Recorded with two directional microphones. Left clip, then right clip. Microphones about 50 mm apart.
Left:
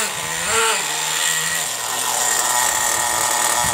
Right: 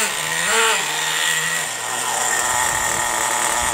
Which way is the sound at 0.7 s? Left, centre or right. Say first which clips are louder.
Right 1 dB; centre.